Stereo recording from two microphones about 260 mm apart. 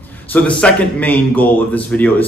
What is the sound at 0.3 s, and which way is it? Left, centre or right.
A man's voice, centre.